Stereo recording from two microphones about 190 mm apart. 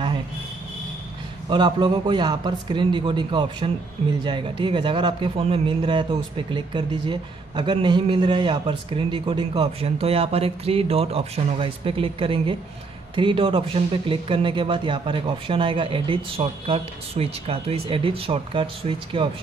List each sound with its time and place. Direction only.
1.5 s speech: 25° right (ahead or behind)